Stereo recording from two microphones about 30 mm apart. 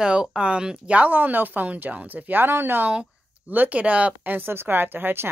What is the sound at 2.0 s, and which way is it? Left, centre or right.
Speech, right.